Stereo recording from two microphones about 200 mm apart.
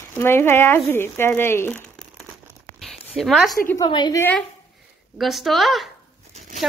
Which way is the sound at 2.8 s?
Centre (ahead or behind).